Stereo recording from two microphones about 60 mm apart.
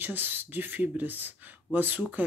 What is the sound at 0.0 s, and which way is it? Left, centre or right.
Speech, right.